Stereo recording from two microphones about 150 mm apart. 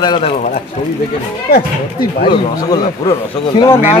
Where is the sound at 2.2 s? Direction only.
30° left (ahead or behind).